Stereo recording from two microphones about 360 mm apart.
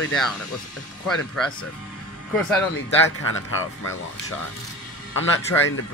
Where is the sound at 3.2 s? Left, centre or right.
Left.